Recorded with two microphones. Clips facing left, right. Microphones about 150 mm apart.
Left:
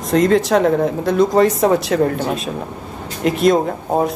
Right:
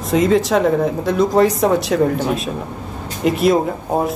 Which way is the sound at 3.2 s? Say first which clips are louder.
Even; centre (ahead or behind).